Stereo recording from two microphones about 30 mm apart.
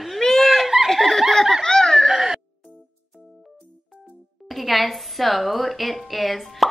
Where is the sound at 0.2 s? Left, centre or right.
Left.